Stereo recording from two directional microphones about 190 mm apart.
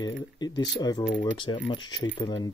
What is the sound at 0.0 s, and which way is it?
Speech, 20° left (ahead or behind).